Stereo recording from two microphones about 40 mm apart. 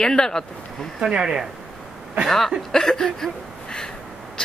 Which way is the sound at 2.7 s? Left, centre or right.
Centre.